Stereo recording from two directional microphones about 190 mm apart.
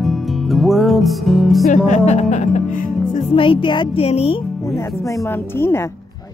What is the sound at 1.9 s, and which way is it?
Speech, 35° left (ahead or behind).